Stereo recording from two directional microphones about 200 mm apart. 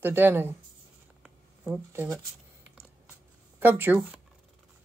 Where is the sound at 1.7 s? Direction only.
15° right (ahead or behind).